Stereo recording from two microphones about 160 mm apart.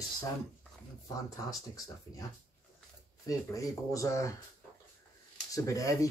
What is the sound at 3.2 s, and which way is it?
Speech, 20° left (ahead or behind).